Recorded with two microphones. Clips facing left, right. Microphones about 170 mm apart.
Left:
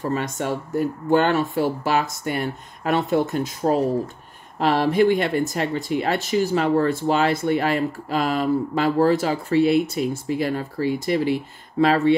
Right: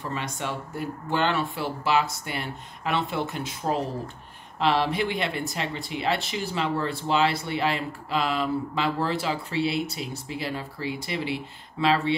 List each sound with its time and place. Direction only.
0.0 s speech: 45° left (ahead or behind)